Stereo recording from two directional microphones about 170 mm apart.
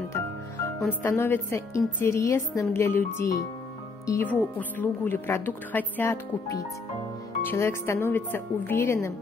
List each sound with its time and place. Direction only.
0.7 s speech: 10° left (ahead or behind)